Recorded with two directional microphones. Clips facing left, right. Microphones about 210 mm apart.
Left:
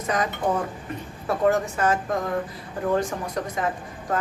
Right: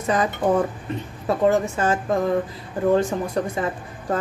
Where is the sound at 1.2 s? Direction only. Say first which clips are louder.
Right 3 dB; 25° right (ahead or behind).